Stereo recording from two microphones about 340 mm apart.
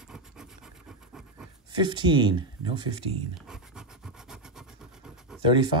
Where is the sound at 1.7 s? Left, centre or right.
Centre.